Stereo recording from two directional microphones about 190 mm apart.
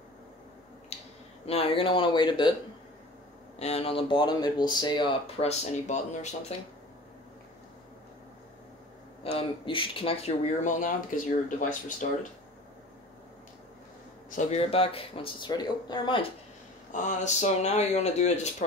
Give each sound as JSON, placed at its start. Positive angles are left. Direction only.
{"t": 0.9, "sound": "a sound", "side_deg": 35}
{"t": 1.4, "sound": "speech", "side_deg": 30}
{"t": 3.5, "sound": "speech", "side_deg": 35}
{"t": 9.2, "sound": "speech", "side_deg": 30}
{"t": 10.6, "sound": "speech", "side_deg": 45}
{"t": 14.3, "sound": "speech", "side_deg": 40}
{"t": 16.9, "sound": "speech", "side_deg": 40}